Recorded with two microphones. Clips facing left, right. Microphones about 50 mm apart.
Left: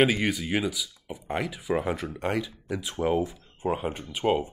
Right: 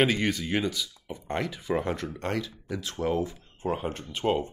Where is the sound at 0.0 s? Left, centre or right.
Centre.